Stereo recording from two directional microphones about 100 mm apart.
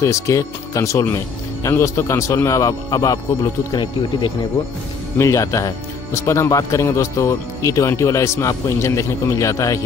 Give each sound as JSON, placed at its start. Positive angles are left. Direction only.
{"t": 0.0, "sound": "speech", "side_deg": 30}
{"t": 3.7, "sound": "speech", "side_deg": 50}
{"t": 5.2, "sound": "speech", "side_deg": 30}